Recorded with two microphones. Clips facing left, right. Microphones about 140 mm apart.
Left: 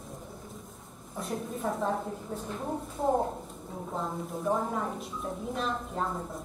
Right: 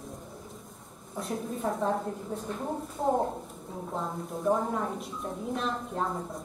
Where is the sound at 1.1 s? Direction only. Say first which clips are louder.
Right 1 dB; centre (ahead or behind).